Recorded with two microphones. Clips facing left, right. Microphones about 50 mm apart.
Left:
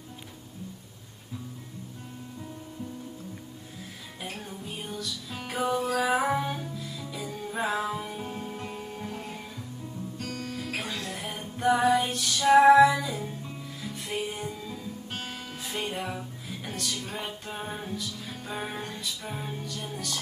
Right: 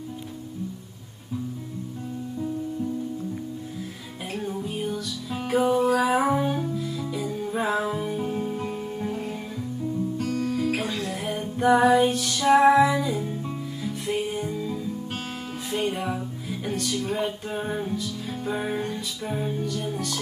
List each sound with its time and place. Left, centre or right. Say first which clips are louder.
4.3 s music: right 11 dB; centre
10.9 s music: right 5 dB; right
11.2 s music: right 4 dB; centre
15.9 s music: right 5 dB; centre
18.7 s music: right 7 dB; centre